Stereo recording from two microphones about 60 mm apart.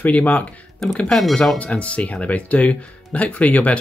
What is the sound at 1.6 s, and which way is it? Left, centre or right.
Speech, left.